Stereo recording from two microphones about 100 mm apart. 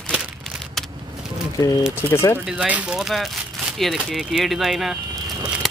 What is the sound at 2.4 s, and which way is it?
Speech, 10° right (ahead or behind).